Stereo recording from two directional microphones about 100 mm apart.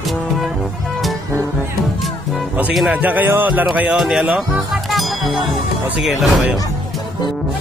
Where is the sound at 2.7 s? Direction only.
10° right (ahead or behind).